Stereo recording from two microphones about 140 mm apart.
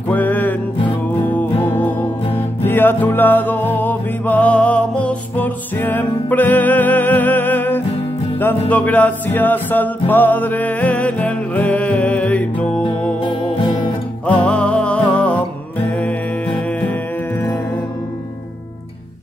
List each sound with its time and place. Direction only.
0.1 s music: 10° left (ahead or behind)
13.6 s music: 35° left (ahead or behind)
14.2 s music: 10° left (ahead or behind)